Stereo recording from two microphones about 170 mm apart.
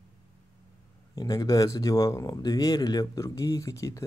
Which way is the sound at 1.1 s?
20° left (ahead or behind).